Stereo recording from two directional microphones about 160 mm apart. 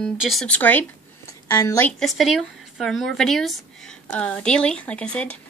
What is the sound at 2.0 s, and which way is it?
Speech, centre (ahead or behind).